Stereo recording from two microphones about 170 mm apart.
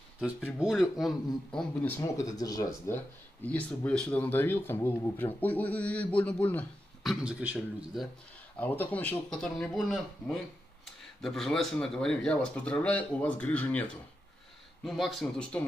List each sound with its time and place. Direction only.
0.2 s speech: centre (ahead or behind); by 2.7 s 20° left (ahead or behind)
3.4 s speech: 10° left (ahead or behind)
8.5 s speech: 10° left (ahead or behind)